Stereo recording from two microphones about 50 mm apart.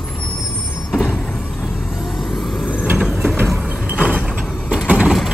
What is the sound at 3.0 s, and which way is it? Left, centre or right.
Vehicle, centre.